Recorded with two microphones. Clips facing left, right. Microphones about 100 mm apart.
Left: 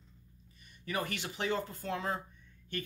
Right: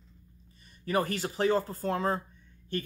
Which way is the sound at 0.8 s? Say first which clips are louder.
Right 7 dB; 40° right (ahead or behind).